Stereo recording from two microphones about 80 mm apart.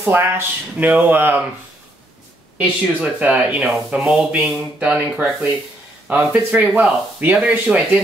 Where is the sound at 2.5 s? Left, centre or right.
Centre.